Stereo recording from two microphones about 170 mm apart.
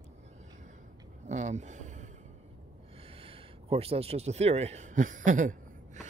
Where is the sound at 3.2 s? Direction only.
35° right (ahead or behind).